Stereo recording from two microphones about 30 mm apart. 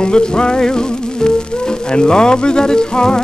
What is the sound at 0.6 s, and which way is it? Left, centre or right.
Music, left.